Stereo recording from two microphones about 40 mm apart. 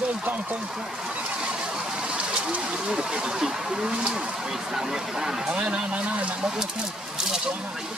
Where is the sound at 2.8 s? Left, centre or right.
Right.